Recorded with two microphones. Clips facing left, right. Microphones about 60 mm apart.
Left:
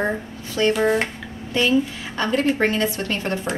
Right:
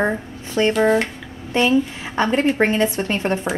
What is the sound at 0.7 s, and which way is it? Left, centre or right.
Speech, centre.